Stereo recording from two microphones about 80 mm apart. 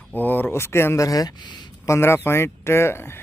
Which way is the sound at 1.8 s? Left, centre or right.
Left.